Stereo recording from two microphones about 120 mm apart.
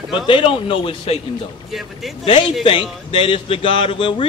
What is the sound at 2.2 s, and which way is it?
A man's voice, 45° left (ahead or behind).